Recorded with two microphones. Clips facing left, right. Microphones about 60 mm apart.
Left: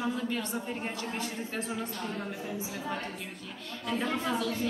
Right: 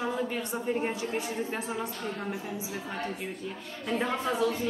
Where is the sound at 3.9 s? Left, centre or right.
Right.